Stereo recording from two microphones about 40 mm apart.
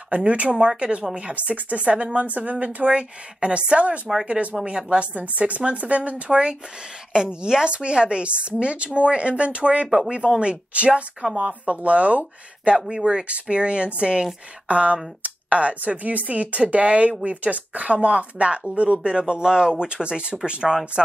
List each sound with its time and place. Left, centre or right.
0.1 s speech: right
0.6 s speech: right
9.8 s speech: centre
10.4 s speech: right